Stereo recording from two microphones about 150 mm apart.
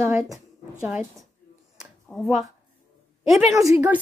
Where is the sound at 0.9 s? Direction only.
Centre (ahead or behind).